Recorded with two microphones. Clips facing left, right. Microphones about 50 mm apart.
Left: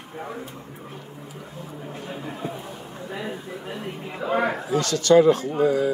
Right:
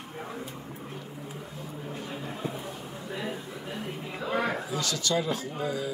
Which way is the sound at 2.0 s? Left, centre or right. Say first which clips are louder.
Left 5 dB; left.